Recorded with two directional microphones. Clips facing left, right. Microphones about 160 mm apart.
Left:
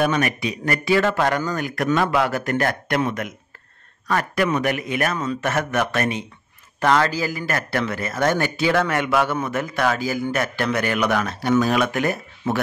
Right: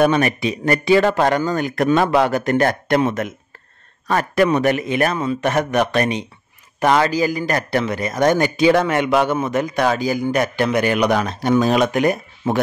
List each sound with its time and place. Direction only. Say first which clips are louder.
0.0 s a man's voice: right 5 dB; 30° right (ahead or behind)